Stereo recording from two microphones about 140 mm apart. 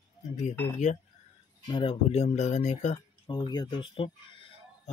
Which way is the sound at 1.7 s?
40° left (ahead or behind).